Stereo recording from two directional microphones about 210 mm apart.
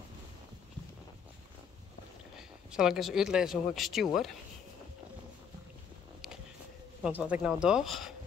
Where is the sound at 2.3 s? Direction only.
Centre (ahead or behind).